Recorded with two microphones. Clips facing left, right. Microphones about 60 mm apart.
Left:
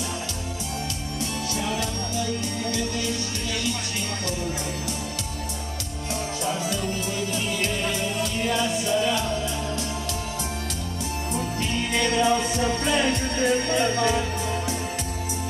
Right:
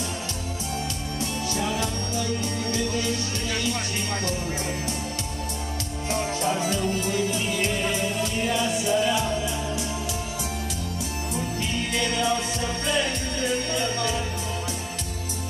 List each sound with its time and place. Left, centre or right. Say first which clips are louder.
6.9 s music: right 3 dB; centre
12.1 s music: left 6 dB; centre